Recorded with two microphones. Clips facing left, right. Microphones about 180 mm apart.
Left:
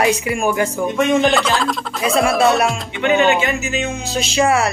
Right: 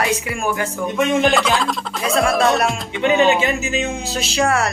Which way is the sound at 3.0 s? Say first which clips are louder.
Even; 30° right (ahead or behind).